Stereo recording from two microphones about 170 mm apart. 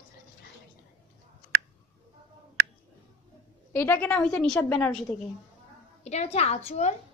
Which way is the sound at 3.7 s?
15° left (ahead or behind).